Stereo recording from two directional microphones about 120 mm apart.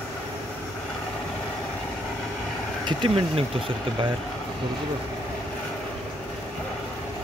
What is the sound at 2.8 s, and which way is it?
Speech, 45° right (ahead or behind).